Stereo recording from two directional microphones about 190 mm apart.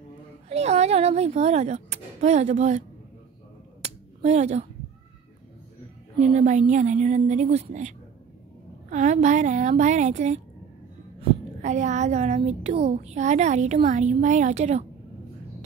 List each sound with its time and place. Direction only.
0.5 s speech: 35° right (ahead or behind)
3.8 s a sound: 35° right (ahead or behind)
6.1 s speech: 35° right (ahead or behind)
8.9 s speech: 40° right (ahead or behind)